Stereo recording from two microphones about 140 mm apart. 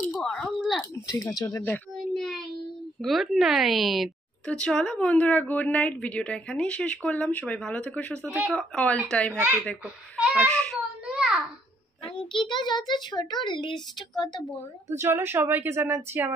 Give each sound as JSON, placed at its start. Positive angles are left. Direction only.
{"t": 0.2, "sound": "a sound", "side_deg": 0}
{"t": 0.9, "sound": "speech", "side_deg": 20}
{"t": 2.0, "sound": "child singing", "side_deg": 0}
{"t": 3.0, "sound": "a woman's voice", "side_deg": 0}
{"t": 8.3, "sound": "a woman's voice", "side_deg": -10}
{"t": 8.5, "sound": "a woman's voice", "side_deg": 5}
{"t": 10.1, "sound": "a sound", "side_deg": -10}
{"t": 10.5, "sound": "a woman's voice", "side_deg": 5}
{"t": 11.1, "sound": "a sound", "side_deg": -5}
{"t": 12.3, "sound": "a child's voice", "side_deg": 35}
{"t": 14.9, "sound": "a woman's voice", "side_deg": -20}